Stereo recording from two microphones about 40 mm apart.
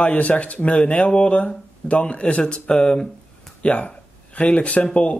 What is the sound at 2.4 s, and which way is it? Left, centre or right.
Speech, left.